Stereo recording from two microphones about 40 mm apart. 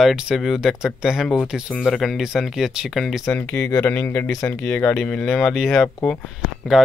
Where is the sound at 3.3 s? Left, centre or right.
Left.